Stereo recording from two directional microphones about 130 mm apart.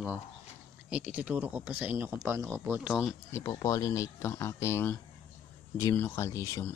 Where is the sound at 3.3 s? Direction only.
25° left (ahead or behind).